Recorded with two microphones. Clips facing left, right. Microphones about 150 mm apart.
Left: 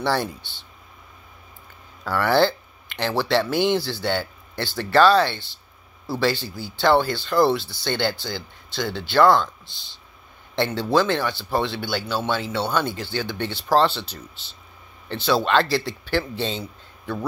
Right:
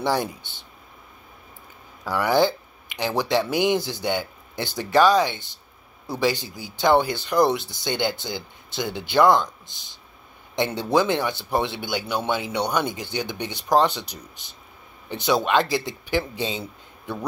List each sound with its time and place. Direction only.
0.0 s speech: 20° right (ahead or behind)
2.0 s speech: 15° right (ahead or behind)
10.5 s a man's voice: 20° right (ahead or behind)